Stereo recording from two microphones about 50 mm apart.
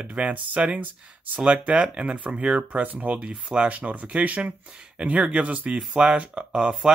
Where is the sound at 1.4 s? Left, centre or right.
Right.